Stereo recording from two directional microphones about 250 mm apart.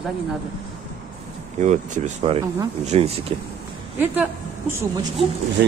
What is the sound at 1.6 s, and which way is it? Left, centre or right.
Speech, right.